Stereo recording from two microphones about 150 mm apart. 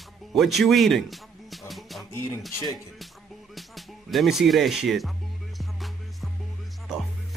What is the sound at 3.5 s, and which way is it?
Speech, centre (ahead or behind).